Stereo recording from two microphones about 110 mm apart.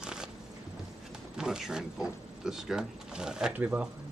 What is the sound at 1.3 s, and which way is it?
Sliding door, 5° right (ahead or behind).